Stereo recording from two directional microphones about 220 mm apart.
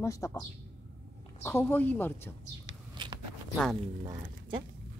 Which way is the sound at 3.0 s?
20° right (ahead or behind).